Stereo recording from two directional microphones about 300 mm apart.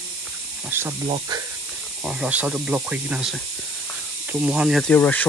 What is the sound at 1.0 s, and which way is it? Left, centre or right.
Speech, centre.